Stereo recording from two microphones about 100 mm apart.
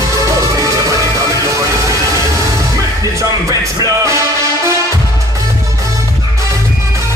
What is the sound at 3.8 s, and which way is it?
Music, 30° right (ahead or behind).